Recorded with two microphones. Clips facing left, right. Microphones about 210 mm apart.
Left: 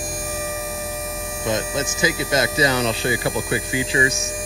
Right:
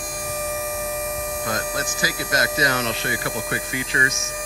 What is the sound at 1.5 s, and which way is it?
Speech, 25° left (ahead or behind).